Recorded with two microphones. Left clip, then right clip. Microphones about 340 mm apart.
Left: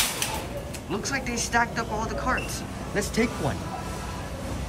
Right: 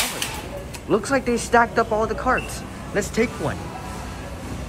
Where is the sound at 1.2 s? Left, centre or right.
Centre.